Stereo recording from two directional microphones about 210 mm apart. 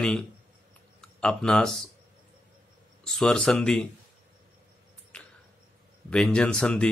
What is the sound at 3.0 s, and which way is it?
Speech, centre (ahead or behind).